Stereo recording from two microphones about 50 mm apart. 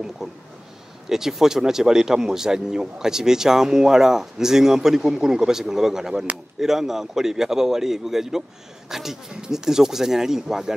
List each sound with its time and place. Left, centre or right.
0.2 s speech: centre